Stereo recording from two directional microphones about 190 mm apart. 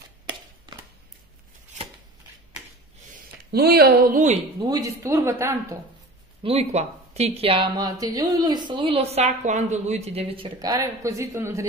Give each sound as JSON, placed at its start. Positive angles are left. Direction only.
{"t": 0.7, "sound": "a sound", "side_deg": -25}
{"t": 3.5, "sound": "speech", "side_deg": -55}
{"t": 4.6, "sound": "speech", "side_deg": -20}
{"t": 6.4, "sound": "speech", "side_deg": -30}